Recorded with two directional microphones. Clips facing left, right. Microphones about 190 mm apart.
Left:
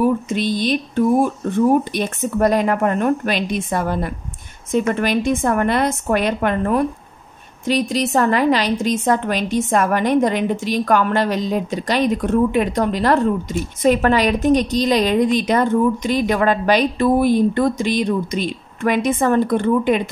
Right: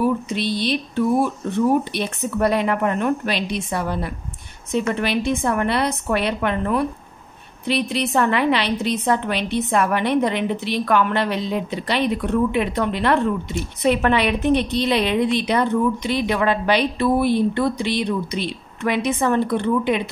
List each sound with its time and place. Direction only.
0.0 s a woman's voice: 45° left (ahead or behind)